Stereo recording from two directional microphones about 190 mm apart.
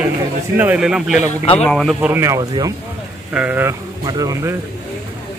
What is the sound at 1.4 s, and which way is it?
Speech, 35° left (ahead or behind).